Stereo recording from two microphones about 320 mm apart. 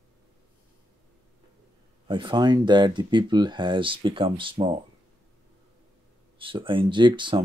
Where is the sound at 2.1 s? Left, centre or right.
Centre.